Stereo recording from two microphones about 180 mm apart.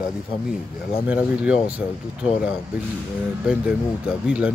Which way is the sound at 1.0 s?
5° right (ahead or behind).